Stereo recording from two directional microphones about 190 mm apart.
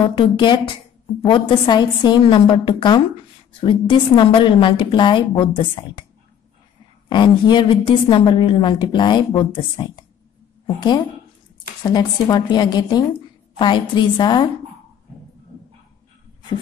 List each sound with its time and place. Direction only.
0.0 s a woman's voice: 25° left (ahead or behind)
7.1 s a woman's voice: 25° left (ahead or behind)